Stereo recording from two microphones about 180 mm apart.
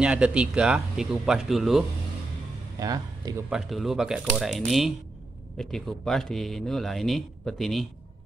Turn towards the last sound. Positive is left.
turn(degrees=0)  # may be behind; listen again after turning